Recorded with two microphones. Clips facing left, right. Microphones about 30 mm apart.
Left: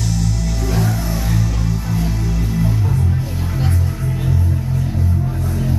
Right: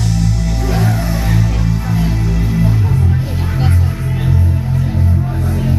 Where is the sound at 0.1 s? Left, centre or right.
Right.